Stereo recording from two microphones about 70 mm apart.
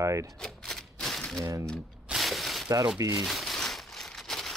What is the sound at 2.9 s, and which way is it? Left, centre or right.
Speech, right.